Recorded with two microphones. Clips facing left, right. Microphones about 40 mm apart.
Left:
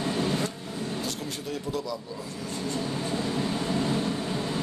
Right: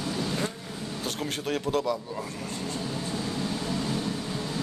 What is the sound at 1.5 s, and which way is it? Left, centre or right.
Speech, right.